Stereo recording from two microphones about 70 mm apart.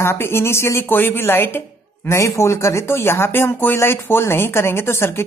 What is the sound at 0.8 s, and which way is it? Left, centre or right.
Speech, left.